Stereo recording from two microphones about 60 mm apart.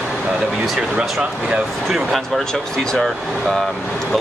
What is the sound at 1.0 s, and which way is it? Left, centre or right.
Speech, centre.